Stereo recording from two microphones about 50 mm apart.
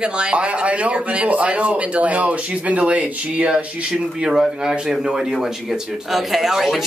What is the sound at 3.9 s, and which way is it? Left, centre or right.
Speech, centre.